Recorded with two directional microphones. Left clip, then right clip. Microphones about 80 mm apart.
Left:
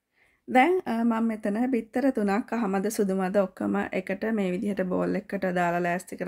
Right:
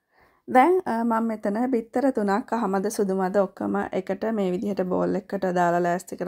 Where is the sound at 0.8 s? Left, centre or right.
Right.